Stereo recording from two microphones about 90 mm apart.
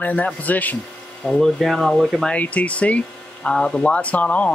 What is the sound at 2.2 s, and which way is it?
Speech, 15° left (ahead or behind).